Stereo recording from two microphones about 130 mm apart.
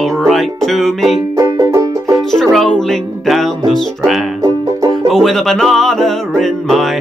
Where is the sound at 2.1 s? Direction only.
Centre (ahead or behind).